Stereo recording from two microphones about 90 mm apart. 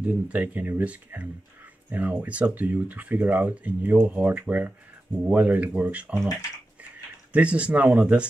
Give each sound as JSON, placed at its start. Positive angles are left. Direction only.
{"t": 0.0, "sound": "speech", "side_deg": -15}
{"t": 7.3, "sound": "speech", "side_deg": -15}